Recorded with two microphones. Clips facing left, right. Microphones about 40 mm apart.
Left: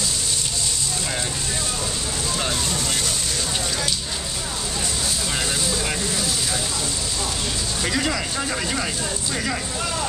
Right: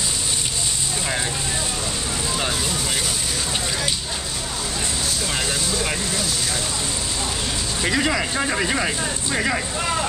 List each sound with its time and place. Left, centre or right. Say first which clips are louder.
5.8 s speech: right 1 dB; centre
7.8 s speech: right 3 dB; centre